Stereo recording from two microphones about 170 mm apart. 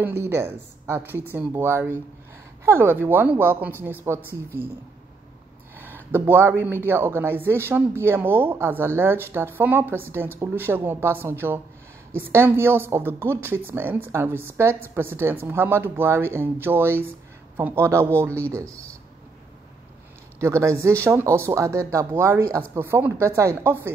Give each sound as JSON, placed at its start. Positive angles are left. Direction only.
{"t": 0.0, "sound": "speech", "side_deg": -15}
{"t": 5.8, "sound": "speech", "side_deg": -10}
{"t": 20.3, "sound": "speech", "side_deg": -15}